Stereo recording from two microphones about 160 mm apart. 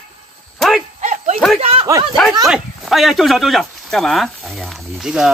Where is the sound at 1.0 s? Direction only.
50° right (ahead or behind).